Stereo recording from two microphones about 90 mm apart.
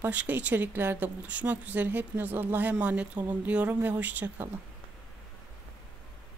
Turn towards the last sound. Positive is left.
turn(degrees=-20)  # may be behind; listen again after turning